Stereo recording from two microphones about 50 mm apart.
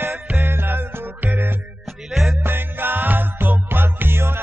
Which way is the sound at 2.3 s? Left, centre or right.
Right.